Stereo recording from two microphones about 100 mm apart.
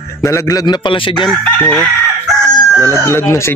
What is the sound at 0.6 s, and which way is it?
Speech, 50° left (ahead or behind).